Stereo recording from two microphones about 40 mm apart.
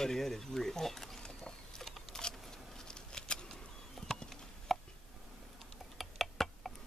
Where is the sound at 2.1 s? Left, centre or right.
Centre.